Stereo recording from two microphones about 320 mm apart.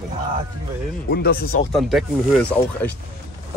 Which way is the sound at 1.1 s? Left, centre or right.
Left.